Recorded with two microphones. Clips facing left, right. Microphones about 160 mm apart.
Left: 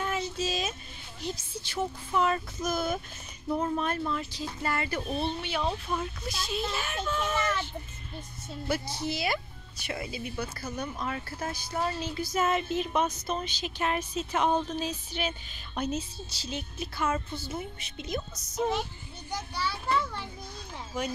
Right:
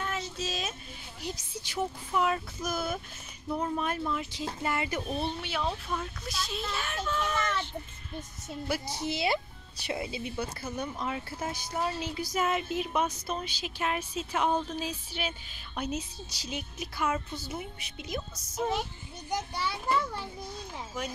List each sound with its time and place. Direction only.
0.0 s a sound: 5° left (ahead or behind)
1.2 s speech: 15° right (ahead or behind)
3.4 s speech: 5° left (ahead or behind)
3.7 s speech: 5° right (ahead or behind)
5.5 s a child's voice: centre (ahead or behind)
7.3 s child singing: 5° left (ahead or behind)
8.6 s speech: 15° right (ahead or behind)
19.3 s speech: 20° right (ahead or behind)